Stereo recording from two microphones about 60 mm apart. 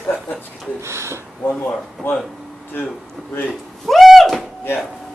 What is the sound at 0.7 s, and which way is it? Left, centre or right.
Gasp, right.